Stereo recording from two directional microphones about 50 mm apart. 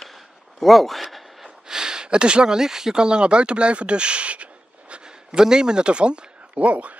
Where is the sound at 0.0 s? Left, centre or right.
Centre.